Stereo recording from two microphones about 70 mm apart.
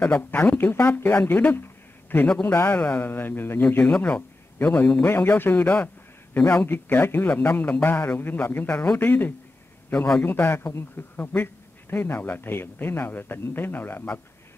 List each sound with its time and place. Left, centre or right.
0.2 s speech: left
2.2 s a man's voice: centre
2.5 s speech: left